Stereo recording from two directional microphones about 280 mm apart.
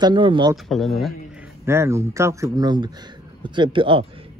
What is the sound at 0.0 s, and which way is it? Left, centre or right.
Speech, centre.